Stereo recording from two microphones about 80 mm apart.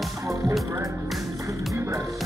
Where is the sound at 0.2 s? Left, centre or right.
Right.